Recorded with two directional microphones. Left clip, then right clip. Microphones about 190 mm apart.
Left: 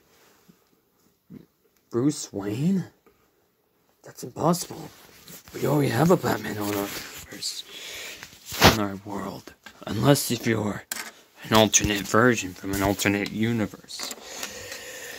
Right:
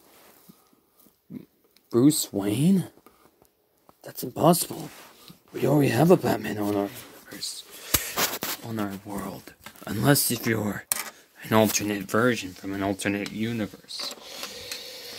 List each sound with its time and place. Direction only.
1.9 s speech: 15° right (ahead or behind)
4.3 s speech: 10° right (ahead or behind)
12.2 s speech: 15° left (ahead or behind)